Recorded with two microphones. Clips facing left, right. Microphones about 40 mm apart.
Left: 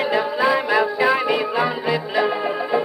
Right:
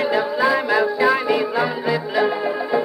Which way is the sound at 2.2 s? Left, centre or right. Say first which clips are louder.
Right 1 dB; centre.